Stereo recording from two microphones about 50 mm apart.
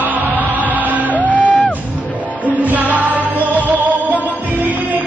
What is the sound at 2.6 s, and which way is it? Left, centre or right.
Music, right.